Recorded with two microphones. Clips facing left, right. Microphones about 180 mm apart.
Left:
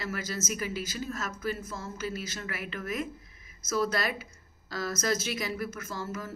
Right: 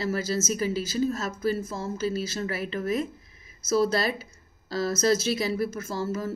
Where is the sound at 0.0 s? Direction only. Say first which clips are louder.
Right 8 dB; 30° right (ahead or behind).